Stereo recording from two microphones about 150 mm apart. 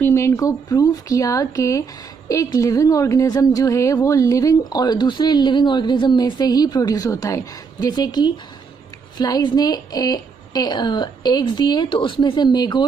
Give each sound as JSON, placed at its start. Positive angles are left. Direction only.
{"t": 0.0, "sound": "speech", "side_deg": 20}